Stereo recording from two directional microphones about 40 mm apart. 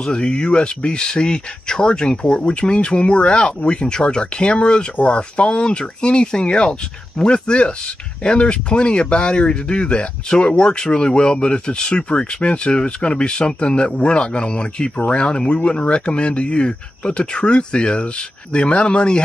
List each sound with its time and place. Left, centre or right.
0.0 s speech: left